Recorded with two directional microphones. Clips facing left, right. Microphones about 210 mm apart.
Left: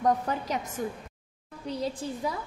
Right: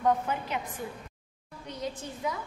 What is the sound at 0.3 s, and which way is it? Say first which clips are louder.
A woman's voice: left 2 dB; 40° left (ahead or behind).